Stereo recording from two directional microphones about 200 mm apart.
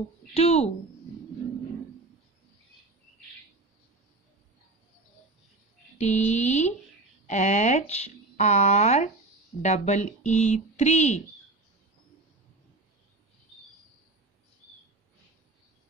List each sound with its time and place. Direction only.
0.3 s speech: 30° left (ahead or behind)
5.9 s speech: 35° left (ahead or behind)